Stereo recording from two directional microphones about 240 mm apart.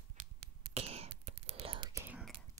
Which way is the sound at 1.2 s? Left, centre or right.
Right.